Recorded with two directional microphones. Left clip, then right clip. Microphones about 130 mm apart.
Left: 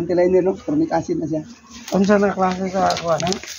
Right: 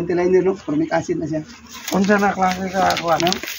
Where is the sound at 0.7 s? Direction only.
30° right (ahead or behind).